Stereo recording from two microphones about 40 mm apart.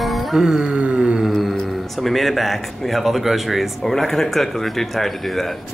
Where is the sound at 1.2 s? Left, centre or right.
Centre.